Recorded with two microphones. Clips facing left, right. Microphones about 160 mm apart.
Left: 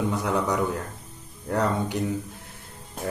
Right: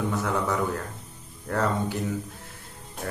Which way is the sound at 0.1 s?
15° left (ahead or behind).